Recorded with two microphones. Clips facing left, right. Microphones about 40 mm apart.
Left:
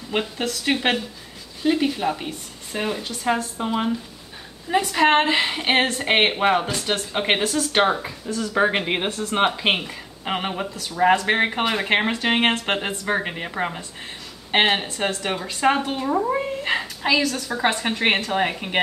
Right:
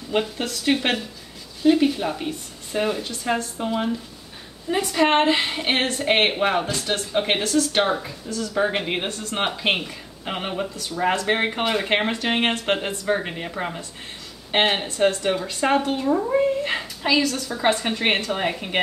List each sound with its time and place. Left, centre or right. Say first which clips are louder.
0.2 s speech: even; centre